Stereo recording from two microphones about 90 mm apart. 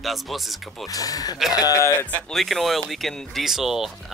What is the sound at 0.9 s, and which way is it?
Speech, 45° left (ahead or behind).